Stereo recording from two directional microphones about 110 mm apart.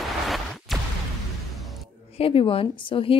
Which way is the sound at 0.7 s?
Centre (ahead or behind).